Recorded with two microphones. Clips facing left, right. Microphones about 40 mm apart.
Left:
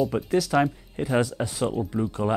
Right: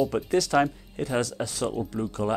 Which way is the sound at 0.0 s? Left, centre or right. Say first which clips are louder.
Left 1 dB; centre.